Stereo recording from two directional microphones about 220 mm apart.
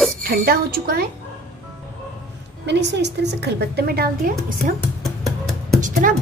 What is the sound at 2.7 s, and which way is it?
A woman's voice, 50° right (ahead or behind).